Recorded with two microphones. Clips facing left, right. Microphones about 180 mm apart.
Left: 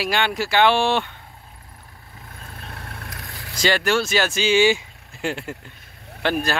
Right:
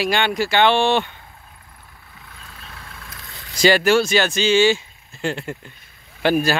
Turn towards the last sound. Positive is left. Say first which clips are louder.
# right 5 dB
turn(degrees=-5)  # may be behind; listen again after turning